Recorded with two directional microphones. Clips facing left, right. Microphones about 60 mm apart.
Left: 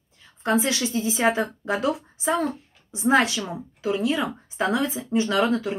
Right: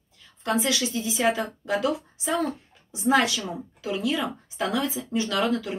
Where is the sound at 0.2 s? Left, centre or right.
Left.